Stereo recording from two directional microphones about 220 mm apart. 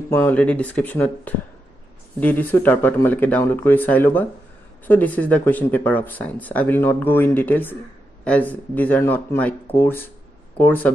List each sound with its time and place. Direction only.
0.1 s speech: 5° left (ahead or behind)